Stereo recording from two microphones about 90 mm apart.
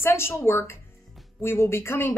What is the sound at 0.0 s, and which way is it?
A woman's voice, 30° left (ahead or behind).